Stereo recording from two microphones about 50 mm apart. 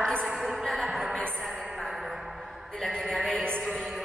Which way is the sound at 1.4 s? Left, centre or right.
Centre.